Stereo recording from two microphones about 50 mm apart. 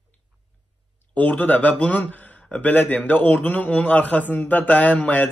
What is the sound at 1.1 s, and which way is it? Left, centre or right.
A man's voice, left.